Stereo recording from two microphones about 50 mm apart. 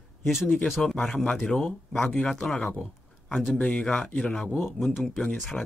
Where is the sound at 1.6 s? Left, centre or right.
Centre.